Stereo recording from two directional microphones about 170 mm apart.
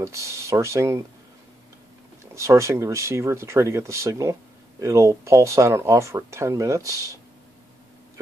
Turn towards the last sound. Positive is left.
turn(degrees=-20)  # may be behind; listen again after turning